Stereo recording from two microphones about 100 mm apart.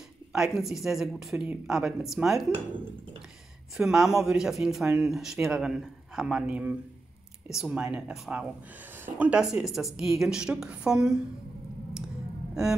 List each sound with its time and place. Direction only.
0.3 s speech: 5° right (ahead or behind)
2.5 s speech: 60° right (ahead or behind)
3.7 s a woman's voice: 5° right (ahead or behind)
8.9 s a sound: 20° right (ahead or behind)
9.3 s a woman's voice: 5° right (ahead or behind)